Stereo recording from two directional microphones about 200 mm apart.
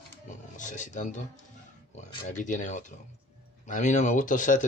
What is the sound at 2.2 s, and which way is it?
Speech, 35° left (ahead or behind).